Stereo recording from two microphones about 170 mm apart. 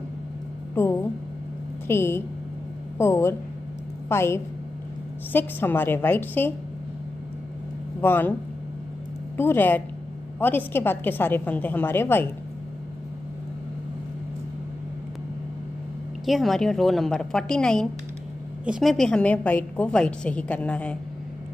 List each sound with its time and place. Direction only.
0.7 s a woman's voice: 10° left (ahead or behind)
8.0 s a woman's voice: 10° left (ahead or behind)
9.4 s a woman's voice: 10° left (ahead or behind)
16.3 s a woman's voice: centre (ahead or behind)